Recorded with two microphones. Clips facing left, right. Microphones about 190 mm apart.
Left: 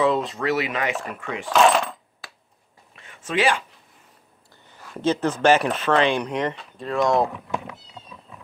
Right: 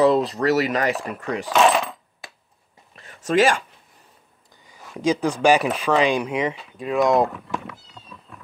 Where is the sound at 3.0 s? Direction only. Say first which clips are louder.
Right 5 dB; 40° right (ahead or behind).